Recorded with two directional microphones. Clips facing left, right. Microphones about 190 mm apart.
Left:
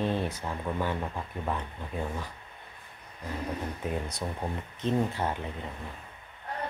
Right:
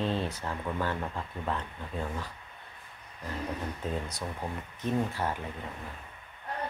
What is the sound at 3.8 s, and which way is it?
Speech, 15° left (ahead or behind).